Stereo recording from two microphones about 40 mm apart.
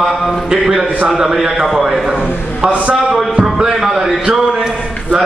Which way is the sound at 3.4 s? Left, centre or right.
Centre.